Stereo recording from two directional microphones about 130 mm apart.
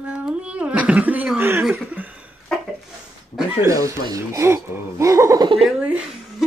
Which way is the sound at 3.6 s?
25° right (ahead or behind).